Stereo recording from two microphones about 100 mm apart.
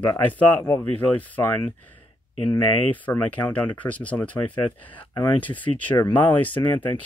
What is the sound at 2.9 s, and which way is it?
Speech, 15° left (ahead or behind).